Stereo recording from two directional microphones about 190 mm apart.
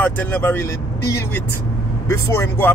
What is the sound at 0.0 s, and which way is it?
Speech, 10° left (ahead or behind).